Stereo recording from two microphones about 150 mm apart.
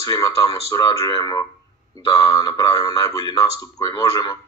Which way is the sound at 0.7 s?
25° left (ahead or behind).